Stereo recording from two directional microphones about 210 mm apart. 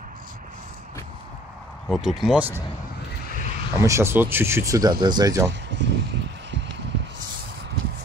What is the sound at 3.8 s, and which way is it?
Speech, 15° right (ahead or behind).